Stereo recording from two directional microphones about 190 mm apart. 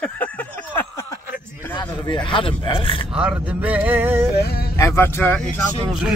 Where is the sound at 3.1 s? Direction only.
5° right (ahead or behind).